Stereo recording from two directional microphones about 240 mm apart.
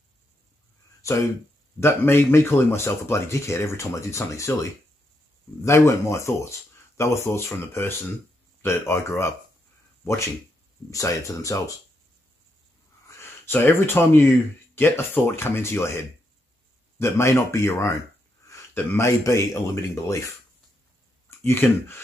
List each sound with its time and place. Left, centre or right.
1.0 s speech: centre
10.9 s speech: centre
13.1 s speech: centre
17.0 s speech: centre
21.5 s speech: centre